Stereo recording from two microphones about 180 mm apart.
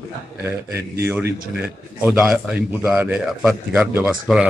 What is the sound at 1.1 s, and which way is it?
A man's voice, 10° right (ahead or behind).